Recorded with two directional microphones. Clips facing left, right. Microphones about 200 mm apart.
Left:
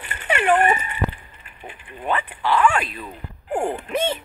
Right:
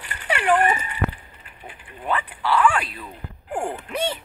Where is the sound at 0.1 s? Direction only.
20° left (ahead or behind).